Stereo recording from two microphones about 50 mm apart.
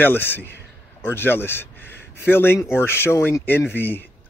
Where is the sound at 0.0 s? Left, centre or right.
Left.